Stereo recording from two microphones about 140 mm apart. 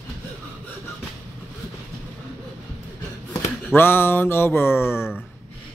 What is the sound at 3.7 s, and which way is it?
A man's voice, 15° left (ahead or behind).